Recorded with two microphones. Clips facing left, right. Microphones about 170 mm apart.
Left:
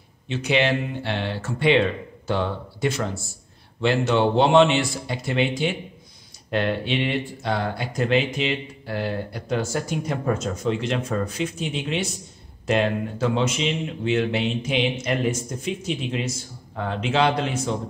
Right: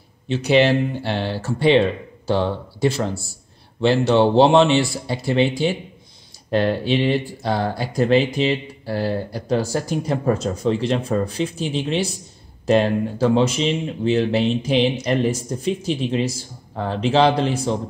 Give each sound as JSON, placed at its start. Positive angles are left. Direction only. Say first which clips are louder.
{"t": 0.3, "sound": "speech", "louder": "right 6 dB", "side_deg": -35}